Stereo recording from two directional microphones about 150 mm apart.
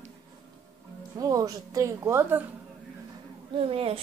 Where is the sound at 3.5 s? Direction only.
40° right (ahead or behind).